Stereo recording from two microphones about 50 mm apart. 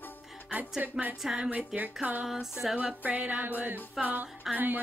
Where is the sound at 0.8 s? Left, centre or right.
Right.